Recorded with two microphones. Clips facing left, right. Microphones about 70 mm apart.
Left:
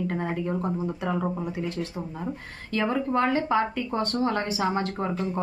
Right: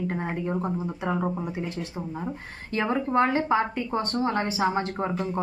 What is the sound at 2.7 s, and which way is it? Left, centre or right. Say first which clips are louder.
Speech: right 1 dB; right.